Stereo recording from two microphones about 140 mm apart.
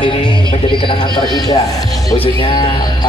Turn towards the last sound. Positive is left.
turn(degrees=35)  # may be behind; listen again after turning